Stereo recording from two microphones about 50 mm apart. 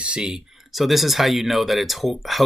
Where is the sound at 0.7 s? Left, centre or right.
Centre.